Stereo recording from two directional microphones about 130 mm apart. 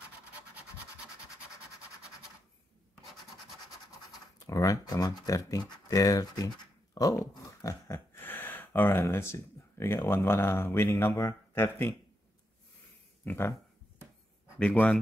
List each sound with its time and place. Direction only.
4.5 s speech: 25° left (ahead or behind)
13.2 s speech: 15° left (ahead or behind)
14.6 s a man's voice: 10° left (ahead or behind)